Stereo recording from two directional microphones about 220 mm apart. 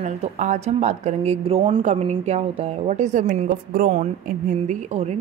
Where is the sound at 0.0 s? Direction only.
35° right (ahead or behind).